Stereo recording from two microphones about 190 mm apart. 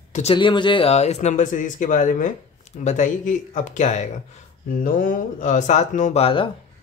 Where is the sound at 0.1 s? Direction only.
30° left (ahead or behind).